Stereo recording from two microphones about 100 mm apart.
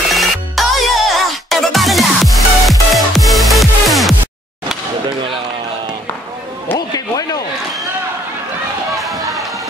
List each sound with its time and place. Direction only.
0.1 s music: centre (ahead or behind)
6.9 s a sound: 40° left (ahead or behind)
8.9 s music: centre (ahead or behind)